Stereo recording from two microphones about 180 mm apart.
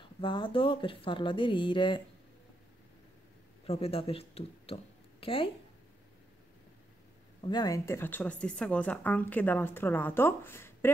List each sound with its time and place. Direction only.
0.2 s speech: 30° left (ahead or behind)
3.6 s speech: 35° left (ahead or behind)
7.4 s speech: 20° left (ahead or behind)